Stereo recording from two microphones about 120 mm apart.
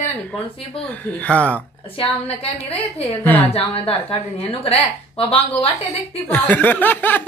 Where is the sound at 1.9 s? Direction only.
55° left (ahead or behind).